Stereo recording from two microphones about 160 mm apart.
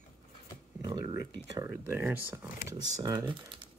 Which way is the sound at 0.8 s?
25° right (ahead or behind).